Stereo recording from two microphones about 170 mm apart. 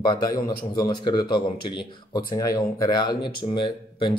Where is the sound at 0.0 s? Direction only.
25° left (ahead or behind).